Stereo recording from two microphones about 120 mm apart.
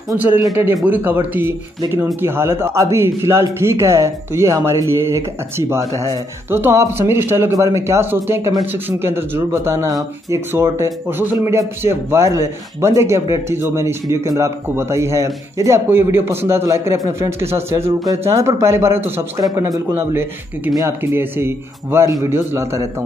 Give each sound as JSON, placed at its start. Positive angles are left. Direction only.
{"t": 0.8, "sound": "speech", "side_deg": -15}
{"t": 19.5, "sound": "a man's voice", "side_deg": -30}